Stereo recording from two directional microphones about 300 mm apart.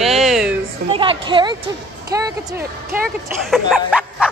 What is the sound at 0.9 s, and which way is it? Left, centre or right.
Speech, centre.